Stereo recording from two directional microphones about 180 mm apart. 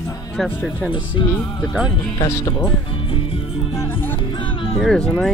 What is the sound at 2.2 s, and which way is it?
Speech, 15° left (ahead or behind).